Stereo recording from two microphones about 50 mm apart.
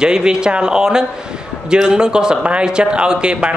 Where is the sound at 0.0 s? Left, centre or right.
Centre.